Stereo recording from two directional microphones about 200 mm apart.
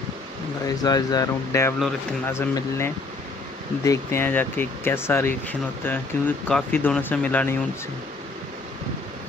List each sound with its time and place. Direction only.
0.7 s speech: 20° left (ahead or behind)